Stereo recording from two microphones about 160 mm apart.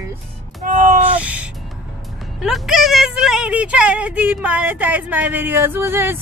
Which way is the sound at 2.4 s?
Centre (ahead or behind).